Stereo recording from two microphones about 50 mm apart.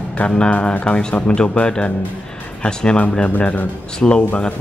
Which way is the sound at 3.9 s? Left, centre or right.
Centre.